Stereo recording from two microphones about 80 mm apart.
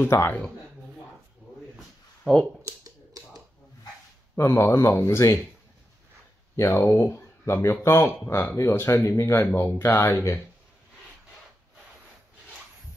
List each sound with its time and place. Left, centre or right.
0.0 s speech: left
1.8 s a sound: centre
2.6 s a sound: right
4.4 s speech: left
6.5 s speech: left
6.8 s speech: left